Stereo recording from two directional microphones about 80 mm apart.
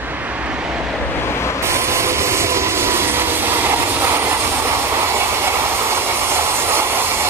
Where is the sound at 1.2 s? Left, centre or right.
Left.